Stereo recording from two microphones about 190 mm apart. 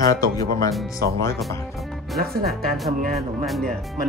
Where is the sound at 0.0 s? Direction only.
20° left (ahead or behind).